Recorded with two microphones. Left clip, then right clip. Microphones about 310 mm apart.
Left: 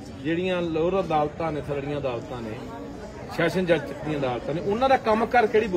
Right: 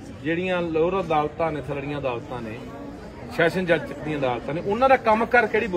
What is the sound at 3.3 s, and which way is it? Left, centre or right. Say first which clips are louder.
A man's voice: right 2 dB; centre.